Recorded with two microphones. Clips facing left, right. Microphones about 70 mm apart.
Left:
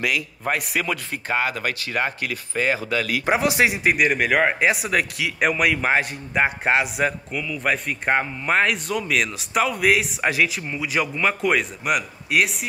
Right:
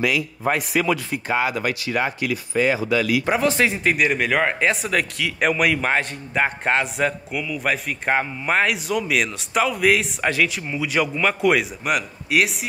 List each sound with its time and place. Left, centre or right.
1.1 s speech: left
3.3 s speech: centre
7.3 s speech: centre